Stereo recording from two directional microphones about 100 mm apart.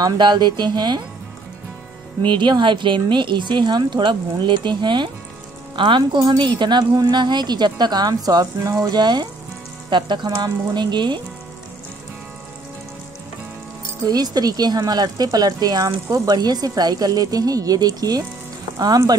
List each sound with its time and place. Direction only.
0.0 s a woman's voice: 45° right (ahead or behind)
2.2 s a woman's voice: 50° right (ahead or behind)
14.0 s speech: 40° right (ahead or behind)